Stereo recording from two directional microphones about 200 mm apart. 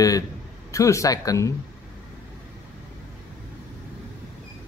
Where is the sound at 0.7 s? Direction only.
15° left (ahead or behind).